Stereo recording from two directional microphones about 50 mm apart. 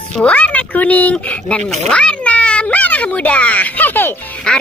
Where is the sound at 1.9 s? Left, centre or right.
Left.